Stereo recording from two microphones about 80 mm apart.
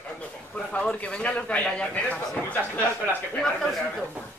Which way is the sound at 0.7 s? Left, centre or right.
Centre.